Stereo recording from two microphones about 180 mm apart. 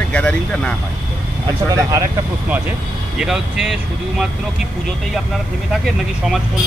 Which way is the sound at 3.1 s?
5° right (ahead or behind).